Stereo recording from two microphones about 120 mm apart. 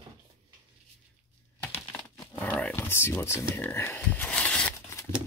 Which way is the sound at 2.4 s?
10° left (ahead or behind).